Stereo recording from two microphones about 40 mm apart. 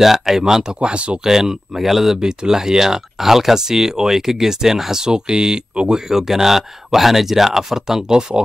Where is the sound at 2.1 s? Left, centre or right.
Centre.